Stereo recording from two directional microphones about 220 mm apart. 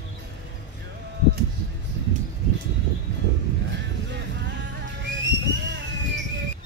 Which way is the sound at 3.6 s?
50° right (ahead or behind).